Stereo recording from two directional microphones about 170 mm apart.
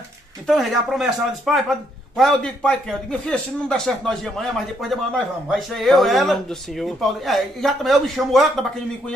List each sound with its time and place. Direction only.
0.5 s a man's voice: centre (ahead or behind)